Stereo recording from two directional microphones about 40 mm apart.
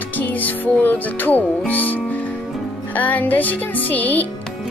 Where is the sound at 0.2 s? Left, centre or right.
Left.